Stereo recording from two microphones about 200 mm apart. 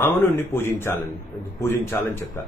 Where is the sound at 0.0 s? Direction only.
10° left (ahead or behind).